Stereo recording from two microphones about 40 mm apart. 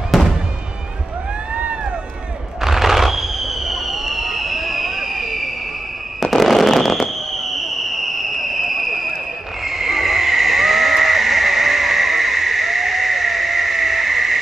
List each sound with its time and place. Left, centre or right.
0.1 s fireworks: centre
2.6 s fireworks: centre
6.2 s fireworks: centre
8.0 s a sound: centre
9.7 s vehicle: centre